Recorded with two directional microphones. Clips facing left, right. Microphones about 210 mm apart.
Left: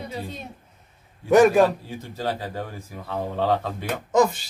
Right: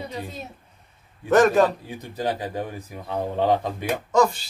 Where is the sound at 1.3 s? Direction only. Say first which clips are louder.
Left 2 dB; 10° left (ahead or behind).